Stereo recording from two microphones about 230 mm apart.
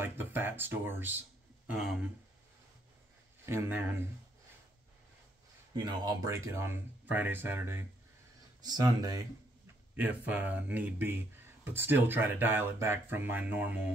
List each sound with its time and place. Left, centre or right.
0.0 s speech: centre
3.4 s speech: centre
5.9 s speech: centre